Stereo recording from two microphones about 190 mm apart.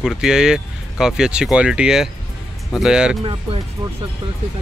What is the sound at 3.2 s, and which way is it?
Speech, 30° right (ahead or behind).